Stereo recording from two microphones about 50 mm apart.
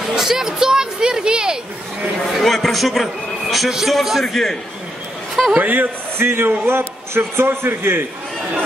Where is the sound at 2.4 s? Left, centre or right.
Centre.